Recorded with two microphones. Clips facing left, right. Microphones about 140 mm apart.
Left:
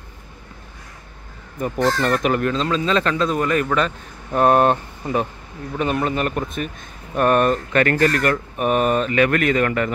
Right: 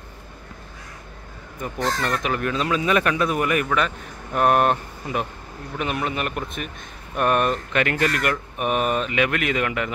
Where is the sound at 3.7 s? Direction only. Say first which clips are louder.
Left 2 dB; 30° left (ahead or behind).